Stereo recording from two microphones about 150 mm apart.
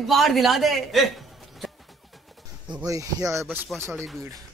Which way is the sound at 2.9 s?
20° right (ahead or behind).